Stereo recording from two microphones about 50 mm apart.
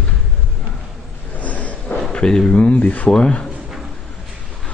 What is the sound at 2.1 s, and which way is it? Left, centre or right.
Speech, centre.